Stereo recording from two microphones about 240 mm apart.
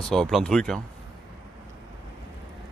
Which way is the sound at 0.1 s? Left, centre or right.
Centre.